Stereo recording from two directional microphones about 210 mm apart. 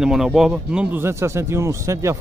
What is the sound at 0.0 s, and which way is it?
Speech, centre (ahead or behind).